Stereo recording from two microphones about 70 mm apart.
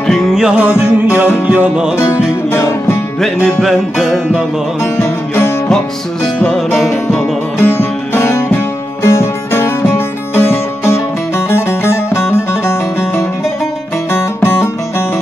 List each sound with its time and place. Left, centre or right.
0.3 s music: centre
0.6 s music: right
3.6 s music: centre
4.9 s music: left
6.5 s music: centre
7.6 s music: left